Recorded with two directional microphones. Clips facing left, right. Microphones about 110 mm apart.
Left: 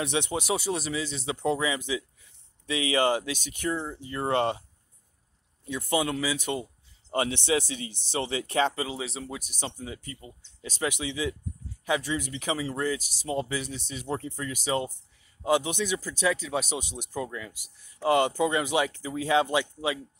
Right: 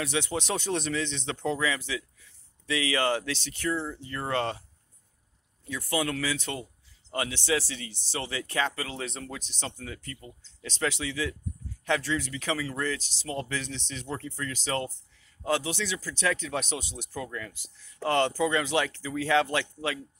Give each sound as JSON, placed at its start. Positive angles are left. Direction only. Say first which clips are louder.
{"t": 0.0, "sound": "speech", "louder": "left 1 dB", "side_deg": 20}
{"t": 5.7, "sound": "speech", "louder": "left 2 dB", "side_deg": 20}
{"t": 8.9, "sound": "speech", "louder": "left 1 dB", "side_deg": 5}